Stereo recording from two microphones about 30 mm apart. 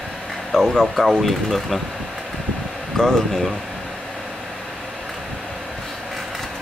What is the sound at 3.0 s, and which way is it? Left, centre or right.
Speech, left.